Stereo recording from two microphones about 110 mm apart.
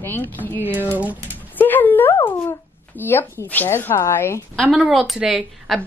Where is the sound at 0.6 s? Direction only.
20° right (ahead or behind).